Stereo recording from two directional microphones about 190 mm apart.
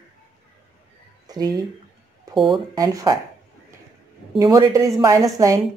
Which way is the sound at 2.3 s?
Centre (ahead or behind).